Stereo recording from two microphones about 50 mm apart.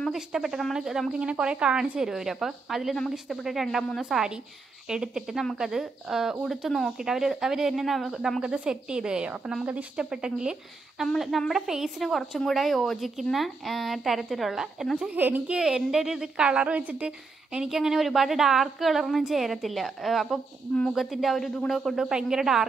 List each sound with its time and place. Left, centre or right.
0.1 s speech: centre
1.1 s a woman's voice: centre
8.4 s speech: centre
11.1 s a woman's voice: centre
15.1 s a woman's voice: right
15.4 s a woman's voice: centre
17.6 s a woman's voice: centre
21.9 s speech: centre